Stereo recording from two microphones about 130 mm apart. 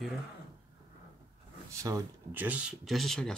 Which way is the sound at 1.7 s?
25° right (ahead or behind).